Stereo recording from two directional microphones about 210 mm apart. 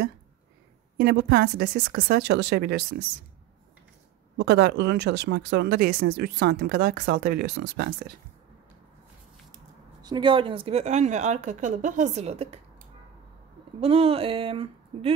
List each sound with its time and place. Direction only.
0.9 s speech: 50° right (ahead or behind)
4.4 s speech: 55° right (ahead or behind)
10.0 s speech: 20° right (ahead or behind)
13.7 s speech: 30° right (ahead or behind)